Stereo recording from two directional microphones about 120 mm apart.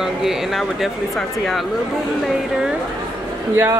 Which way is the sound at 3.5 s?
20° right (ahead or behind).